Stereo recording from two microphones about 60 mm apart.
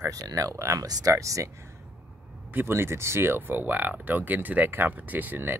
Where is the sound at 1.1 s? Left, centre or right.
Right.